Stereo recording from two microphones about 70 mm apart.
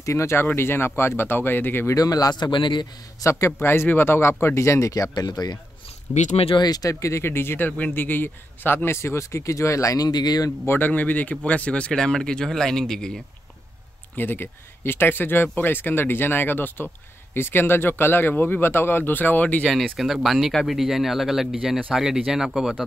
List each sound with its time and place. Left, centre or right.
0.0 s speech: left
2.0 s a man's voice: left
3.3 s speech: left
3.6 s speech: left
6.6 s a man's voice: left
6.9 s speech: left
10.0 s a man's voice: left
10.6 s speech: left
10.9 s speech: left; by 13.2 s centre
14.1 s speech: left
20.0 s speech: centre